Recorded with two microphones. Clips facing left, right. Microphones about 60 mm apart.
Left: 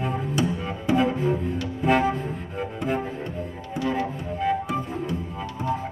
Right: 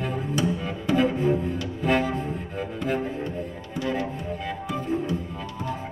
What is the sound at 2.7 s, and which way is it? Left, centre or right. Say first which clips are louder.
Music: right 1 dB; centre.